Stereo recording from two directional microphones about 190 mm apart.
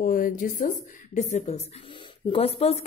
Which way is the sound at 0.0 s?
45° left (ahead or behind).